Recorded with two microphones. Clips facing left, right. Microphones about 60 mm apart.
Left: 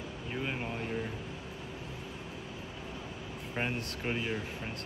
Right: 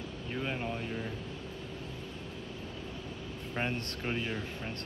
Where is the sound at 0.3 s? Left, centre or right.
Centre.